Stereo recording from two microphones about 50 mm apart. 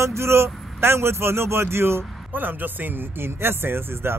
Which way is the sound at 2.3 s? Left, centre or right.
Right.